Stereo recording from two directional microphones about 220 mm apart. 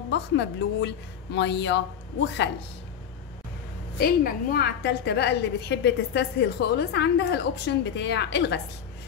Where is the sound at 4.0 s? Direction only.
45° left (ahead or behind).